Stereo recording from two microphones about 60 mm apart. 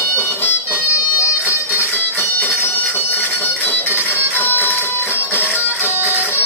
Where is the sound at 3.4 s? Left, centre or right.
Left.